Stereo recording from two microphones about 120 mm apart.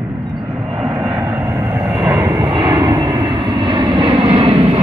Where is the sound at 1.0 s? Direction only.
25° right (ahead or behind).